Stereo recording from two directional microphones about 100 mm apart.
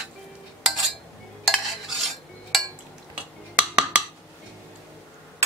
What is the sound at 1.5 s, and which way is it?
Cutlery, centre (ahead or behind).